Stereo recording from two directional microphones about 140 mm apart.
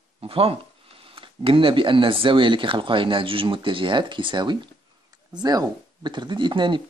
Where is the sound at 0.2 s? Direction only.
45° right (ahead or behind).